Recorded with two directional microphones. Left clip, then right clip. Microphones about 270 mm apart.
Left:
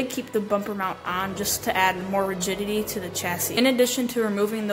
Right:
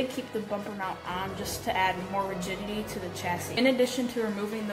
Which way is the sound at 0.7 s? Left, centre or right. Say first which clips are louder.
Left 6 dB; left.